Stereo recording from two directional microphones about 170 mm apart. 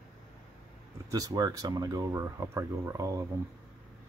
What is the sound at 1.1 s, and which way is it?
Speech, 20° right (ahead or behind).